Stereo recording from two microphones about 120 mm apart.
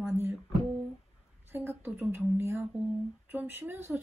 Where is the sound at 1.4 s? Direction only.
20° right (ahead or behind).